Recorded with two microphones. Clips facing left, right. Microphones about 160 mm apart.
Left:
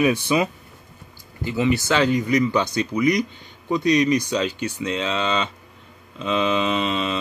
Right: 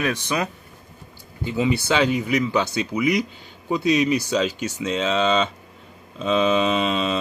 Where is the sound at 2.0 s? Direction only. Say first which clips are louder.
Left 1 dB; 10° right (ahead or behind).